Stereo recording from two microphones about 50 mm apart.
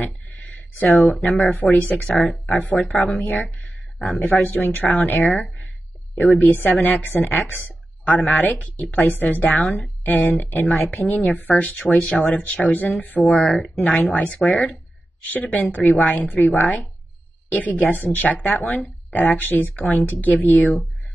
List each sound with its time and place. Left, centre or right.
0.0 s a sound: left
1.2 s speech: left
6.4 s speech: left